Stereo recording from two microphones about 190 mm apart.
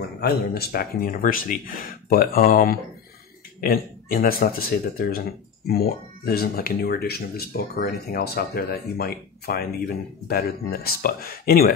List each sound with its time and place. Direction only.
0.2 s speech: 55° left (ahead or behind)